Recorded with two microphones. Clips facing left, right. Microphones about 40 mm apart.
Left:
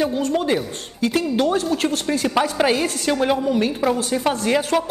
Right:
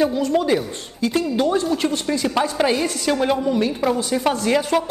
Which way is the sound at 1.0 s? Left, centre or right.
Left.